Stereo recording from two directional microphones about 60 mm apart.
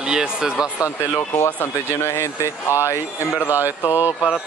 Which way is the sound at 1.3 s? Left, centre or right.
Left.